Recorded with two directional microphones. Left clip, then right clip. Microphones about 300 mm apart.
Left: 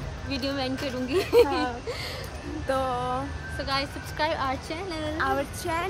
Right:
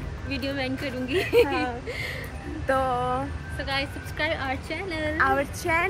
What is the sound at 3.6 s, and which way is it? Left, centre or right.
Speech, centre.